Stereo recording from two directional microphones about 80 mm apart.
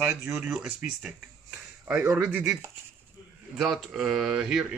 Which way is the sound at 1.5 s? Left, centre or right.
Centre.